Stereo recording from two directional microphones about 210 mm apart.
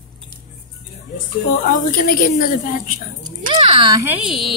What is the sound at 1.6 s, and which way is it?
A woman's voice, 40° left (ahead or behind).